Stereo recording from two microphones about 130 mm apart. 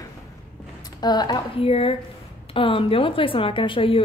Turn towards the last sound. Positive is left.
turn(degrees=45)  # may be behind; listen again after turning